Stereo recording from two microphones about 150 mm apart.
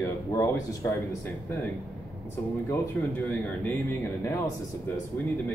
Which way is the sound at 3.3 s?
10° left (ahead or behind).